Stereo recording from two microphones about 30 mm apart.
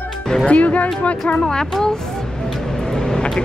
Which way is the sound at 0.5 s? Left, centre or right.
Left.